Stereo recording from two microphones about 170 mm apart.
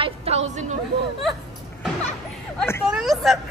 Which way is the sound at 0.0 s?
35° right (ahead or behind).